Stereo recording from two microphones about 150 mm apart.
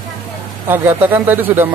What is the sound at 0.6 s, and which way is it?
A woman's voice, 15° right (ahead or behind).